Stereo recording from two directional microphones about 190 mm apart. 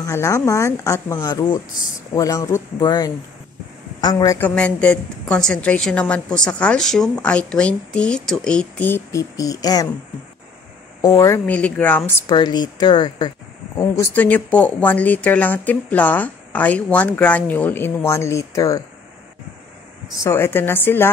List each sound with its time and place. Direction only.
0.0 s a woman's voice: 15° left (ahead or behind)
4.5 s a woman's voice: 5° left (ahead or behind)
11.0 s a woman's voice: 20° left (ahead or behind)
12.3 s a woman's voice: 20° left (ahead or behind)
20.2 s a woman's voice: 10° left (ahead or behind)